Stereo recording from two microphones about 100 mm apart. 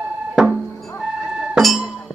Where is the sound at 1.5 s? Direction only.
Centre (ahead or behind).